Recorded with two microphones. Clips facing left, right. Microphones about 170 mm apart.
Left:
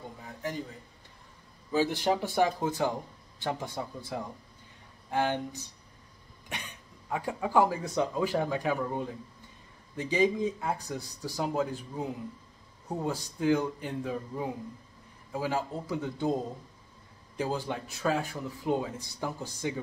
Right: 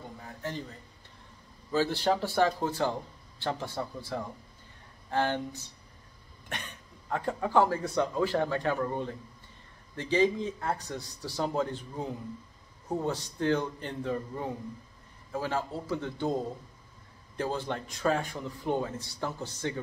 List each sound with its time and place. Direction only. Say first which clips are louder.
0.4 s a man's voice: left 2 dB; 10° left (ahead or behind)
1.7 s a man's voice: even; 15° left (ahead or behind)
7.1 s a man's voice: right 1 dB; 10° left (ahead or behind)
17.4 s a man's voice: even; 10° left (ahead or behind)